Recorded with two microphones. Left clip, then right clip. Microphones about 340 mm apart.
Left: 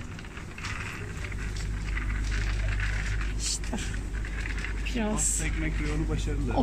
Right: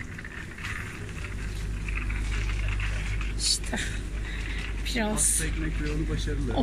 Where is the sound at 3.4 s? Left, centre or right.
Centre.